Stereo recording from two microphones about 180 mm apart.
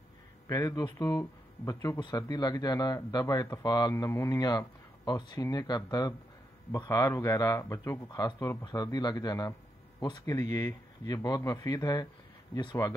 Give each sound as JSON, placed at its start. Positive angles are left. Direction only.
{"t": 0.5, "sound": "speech", "side_deg": 20}